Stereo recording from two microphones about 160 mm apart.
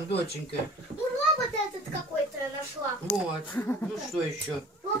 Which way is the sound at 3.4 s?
10° left (ahead or behind).